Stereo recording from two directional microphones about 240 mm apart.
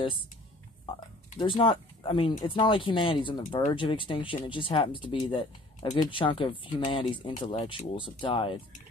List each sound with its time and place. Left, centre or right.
1.4 s speech: left